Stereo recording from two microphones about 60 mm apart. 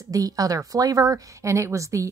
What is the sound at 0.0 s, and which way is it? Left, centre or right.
Speech, right.